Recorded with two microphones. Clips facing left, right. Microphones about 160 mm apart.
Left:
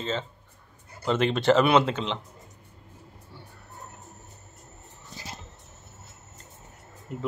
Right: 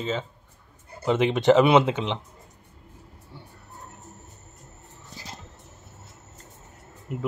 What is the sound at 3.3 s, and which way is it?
Vehicle, 20° right (ahead or behind).